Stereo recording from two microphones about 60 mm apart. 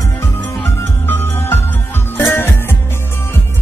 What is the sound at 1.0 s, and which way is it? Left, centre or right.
Music, left.